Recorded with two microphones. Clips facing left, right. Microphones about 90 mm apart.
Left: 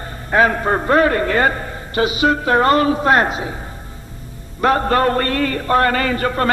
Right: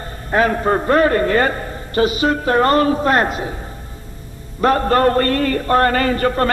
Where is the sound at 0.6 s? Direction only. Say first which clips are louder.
Right 1 dB; 40° left (ahead or behind).